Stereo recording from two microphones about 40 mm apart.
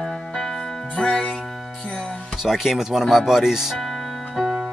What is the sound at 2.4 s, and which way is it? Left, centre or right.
Speech, centre.